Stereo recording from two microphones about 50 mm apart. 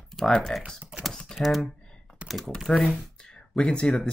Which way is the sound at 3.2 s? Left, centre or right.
Centre.